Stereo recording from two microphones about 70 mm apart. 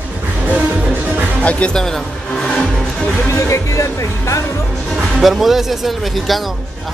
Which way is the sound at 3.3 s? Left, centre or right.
Left.